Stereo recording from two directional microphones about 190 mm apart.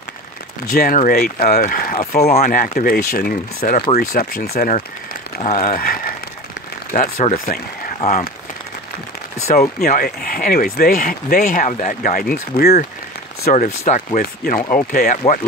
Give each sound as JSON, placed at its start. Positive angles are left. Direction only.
{"t": 0.7, "sound": "speech", "side_deg": 45}
{"t": 9.5, "sound": "speech", "side_deg": 45}